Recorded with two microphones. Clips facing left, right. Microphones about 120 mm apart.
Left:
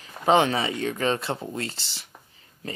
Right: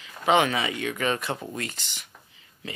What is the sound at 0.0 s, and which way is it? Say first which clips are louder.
Speech: left 2 dB; 35° left (ahead or behind).